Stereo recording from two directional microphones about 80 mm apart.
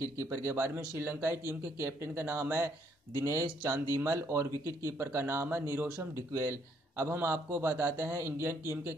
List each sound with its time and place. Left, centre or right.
0.0 s a man's voice: right